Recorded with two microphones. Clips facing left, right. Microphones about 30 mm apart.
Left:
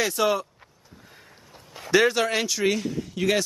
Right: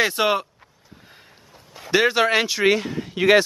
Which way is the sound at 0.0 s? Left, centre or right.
Right.